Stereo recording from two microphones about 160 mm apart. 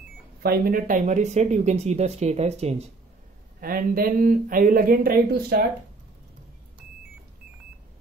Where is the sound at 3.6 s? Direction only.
65° right (ahead or behind).